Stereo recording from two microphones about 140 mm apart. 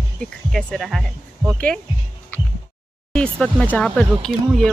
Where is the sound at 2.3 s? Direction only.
15° left (ahead or behind).